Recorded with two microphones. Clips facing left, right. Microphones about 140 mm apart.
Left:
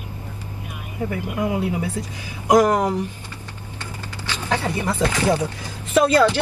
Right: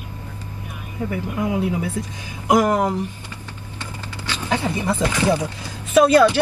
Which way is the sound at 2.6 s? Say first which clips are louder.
Even; 10° right (ahead or behind).